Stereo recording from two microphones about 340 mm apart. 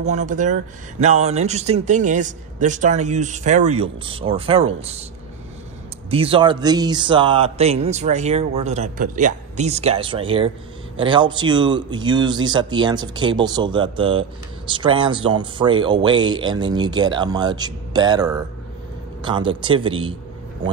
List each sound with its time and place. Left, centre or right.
0.0 s speech: right
6.0 s speech: centre